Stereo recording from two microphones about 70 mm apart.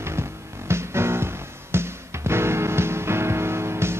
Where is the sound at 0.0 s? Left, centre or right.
Right.